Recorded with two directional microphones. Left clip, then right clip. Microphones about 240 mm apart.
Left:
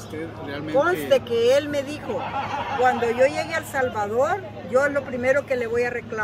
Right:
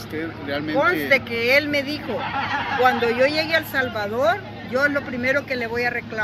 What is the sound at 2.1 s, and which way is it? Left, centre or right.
Neigh, left.